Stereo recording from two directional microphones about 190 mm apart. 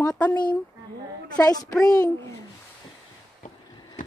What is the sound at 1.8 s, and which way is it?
Speech, 20° left (ahead or behind).